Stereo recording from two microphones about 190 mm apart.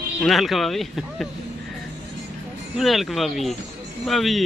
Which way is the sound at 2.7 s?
Centre (ahead or behind).